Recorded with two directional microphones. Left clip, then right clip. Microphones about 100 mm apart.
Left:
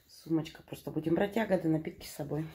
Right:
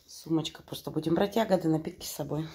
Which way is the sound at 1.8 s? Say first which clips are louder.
Right 4 dB; 30° right (ahead or behind).